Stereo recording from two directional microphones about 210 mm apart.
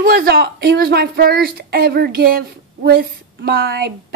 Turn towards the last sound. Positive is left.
turn(degrees=-50)  # may be behind; listen again after turning